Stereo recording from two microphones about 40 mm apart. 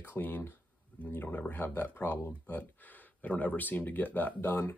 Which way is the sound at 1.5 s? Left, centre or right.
Left.